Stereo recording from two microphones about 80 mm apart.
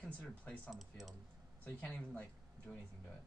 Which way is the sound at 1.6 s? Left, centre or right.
Centre.